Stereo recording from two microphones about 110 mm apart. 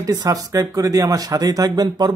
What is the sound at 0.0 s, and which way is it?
Speech, 30° right (ahead or behind).